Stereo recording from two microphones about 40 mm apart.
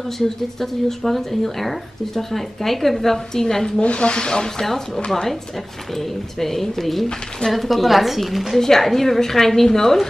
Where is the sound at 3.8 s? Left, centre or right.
Left.